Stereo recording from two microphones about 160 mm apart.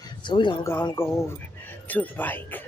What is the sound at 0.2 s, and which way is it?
Speech, 30° left (ahead or behind).